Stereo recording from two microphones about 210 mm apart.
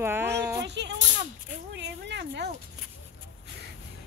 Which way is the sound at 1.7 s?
55° right (ahead or behind).